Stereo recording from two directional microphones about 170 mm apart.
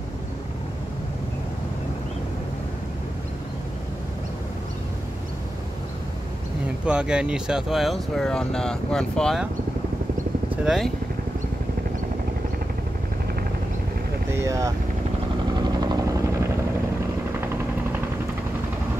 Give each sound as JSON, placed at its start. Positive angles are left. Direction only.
{"t": 6.9, "sound": "speech", "side_deg": -5}
{"t": 10.5, "sound": "speech", "side_deg": -5}
{"t": 14.3, "sound": "speech", "side_deg": -20}
{"t": 15.5, "sound": "helicopter", "side_deg": -25}